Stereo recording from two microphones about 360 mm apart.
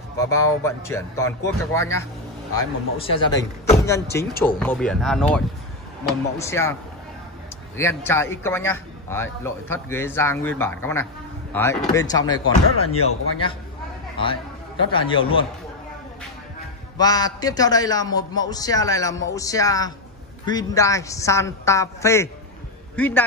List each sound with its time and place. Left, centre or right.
0.2 s a man's voice: centre
4.3 s speech: left
4.6 s a man's voice: centre
7.7 s a man's voice: centre
12.8 s speech: left
14.9 s a man's voice: centre
17.0 s a man's voice: centre